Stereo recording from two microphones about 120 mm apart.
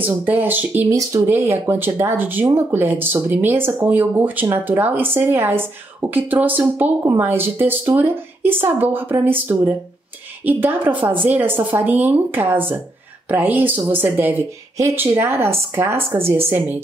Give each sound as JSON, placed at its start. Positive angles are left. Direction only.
{"t": 0.0, "sound": "speech", "side_deg": -15}
{"t": 0.9, "sound": "speech", "side_deg": -25}
{"t": 1.3, "sound": "speech", "side_deg": -15}